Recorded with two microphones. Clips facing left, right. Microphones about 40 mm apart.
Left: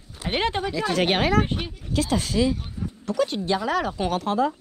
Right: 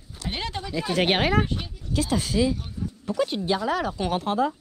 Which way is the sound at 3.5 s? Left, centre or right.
Centre.